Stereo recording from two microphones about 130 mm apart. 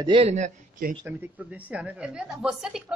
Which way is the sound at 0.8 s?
90° right.